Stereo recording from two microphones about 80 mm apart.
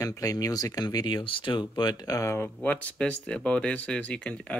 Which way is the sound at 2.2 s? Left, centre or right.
Left.